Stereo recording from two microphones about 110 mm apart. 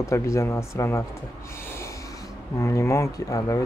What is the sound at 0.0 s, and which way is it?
Speech, 30° left (ahead or behind).